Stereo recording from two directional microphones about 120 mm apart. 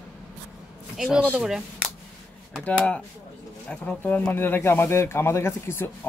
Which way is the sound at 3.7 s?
10° left (ahead or behind).